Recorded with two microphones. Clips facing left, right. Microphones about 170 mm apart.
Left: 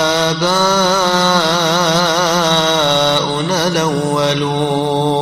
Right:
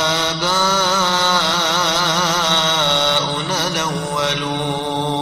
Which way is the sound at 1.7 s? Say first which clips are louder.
Left 6 dB; 65° left (ahead or behind).